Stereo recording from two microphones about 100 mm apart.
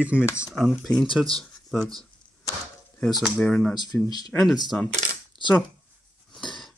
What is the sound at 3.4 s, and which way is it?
Speech, 5° left (ahead or behind).